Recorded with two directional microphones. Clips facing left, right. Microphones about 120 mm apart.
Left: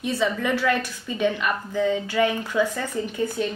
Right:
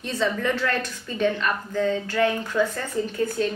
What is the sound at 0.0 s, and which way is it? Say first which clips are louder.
A woman's voice: left 1 dB; 10° left (ahead or behind).